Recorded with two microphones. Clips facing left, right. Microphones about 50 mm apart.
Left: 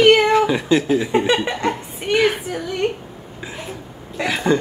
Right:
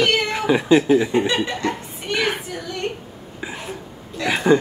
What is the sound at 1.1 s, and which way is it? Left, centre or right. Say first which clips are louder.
Speech: left 2 dB; left.